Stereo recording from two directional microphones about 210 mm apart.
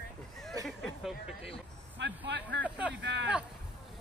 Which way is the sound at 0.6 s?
Centre (ahead or behind).